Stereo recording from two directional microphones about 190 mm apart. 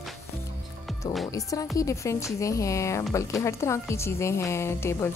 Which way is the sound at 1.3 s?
20° left (ahead or behind).